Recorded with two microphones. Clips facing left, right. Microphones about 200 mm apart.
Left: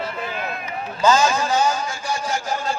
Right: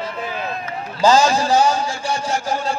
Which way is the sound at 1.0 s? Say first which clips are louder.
Right 3 dB; 35° right (ahead or behind).